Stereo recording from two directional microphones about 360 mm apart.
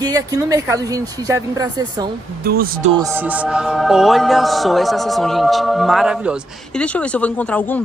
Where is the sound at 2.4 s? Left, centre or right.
Right.